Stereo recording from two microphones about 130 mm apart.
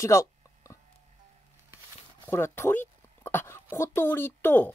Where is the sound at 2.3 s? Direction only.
15° left (ahead or behind).